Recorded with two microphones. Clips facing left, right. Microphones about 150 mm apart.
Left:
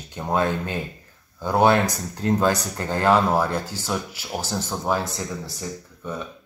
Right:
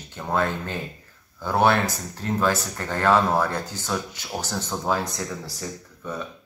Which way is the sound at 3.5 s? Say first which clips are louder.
Left 2 dB; 10° left (ahead or behind).